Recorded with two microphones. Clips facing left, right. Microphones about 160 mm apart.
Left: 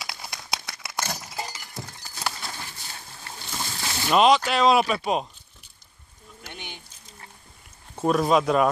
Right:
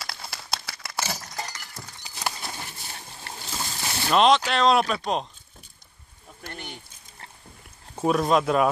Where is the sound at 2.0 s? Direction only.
20° right (ahead or behind).